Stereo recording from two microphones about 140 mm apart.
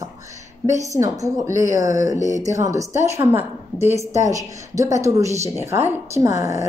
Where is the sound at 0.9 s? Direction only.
20° right (ahead or behind).